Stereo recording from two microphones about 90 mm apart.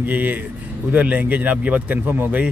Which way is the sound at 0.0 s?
20° right (ahead or behind).